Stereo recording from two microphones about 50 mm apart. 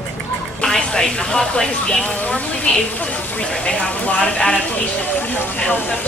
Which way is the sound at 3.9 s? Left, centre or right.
Left.